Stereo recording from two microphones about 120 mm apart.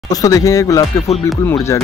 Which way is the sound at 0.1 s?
30° left (ahead or behind).